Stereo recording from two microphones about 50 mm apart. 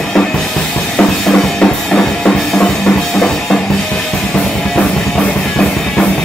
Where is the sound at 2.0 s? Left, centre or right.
Centre.